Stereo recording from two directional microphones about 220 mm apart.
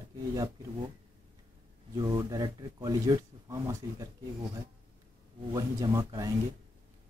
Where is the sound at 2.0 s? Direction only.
20° right (ahead or behind).